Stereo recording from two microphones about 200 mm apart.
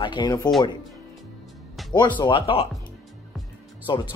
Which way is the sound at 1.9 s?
20° left (ahead or behind).